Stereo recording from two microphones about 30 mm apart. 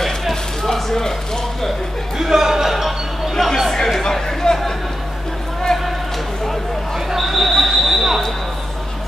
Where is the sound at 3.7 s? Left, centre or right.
Centre.